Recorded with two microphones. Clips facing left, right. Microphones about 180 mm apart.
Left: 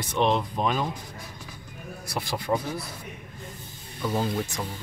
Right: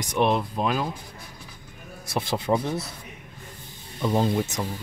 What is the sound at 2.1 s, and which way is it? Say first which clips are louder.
Speech: right 3 dB; 25° right (ahead or behind).